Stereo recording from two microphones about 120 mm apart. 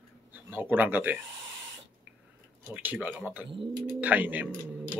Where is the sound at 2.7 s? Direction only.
15° right (ahead or behind).